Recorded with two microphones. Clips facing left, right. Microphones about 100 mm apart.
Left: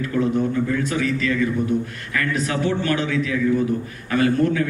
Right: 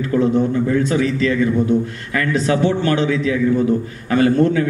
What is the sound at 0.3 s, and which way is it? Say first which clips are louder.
A man's voice: right 4 dB; 25° right (ahead or behind).